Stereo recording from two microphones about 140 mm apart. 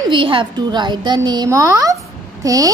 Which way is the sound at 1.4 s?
20° right (ahead or behind).